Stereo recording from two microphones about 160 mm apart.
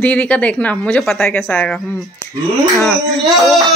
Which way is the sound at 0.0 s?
10° left (ahead or behind).